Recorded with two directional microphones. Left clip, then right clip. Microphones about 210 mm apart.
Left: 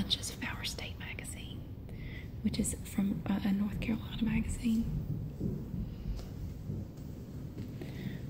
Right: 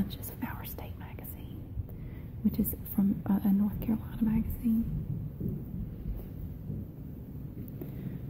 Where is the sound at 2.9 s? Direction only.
10° right (ahead or behind).